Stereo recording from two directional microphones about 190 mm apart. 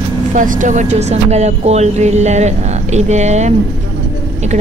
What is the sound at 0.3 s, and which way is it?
Speech, 45° right (ahead or behind).